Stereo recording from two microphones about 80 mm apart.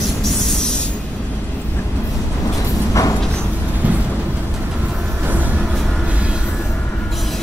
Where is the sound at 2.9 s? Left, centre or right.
Left.